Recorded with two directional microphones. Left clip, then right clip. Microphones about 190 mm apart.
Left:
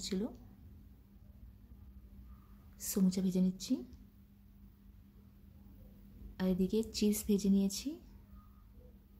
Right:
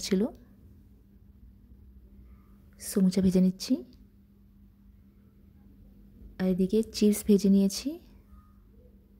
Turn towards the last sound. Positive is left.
turn(degrees=-30)  # may be behind; listen again after turning